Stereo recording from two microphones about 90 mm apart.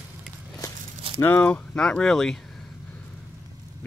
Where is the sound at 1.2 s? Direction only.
20° left (ahead or behind).